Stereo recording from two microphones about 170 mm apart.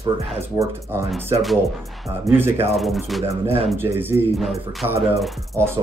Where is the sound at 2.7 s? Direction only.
Centre (ahead or behind).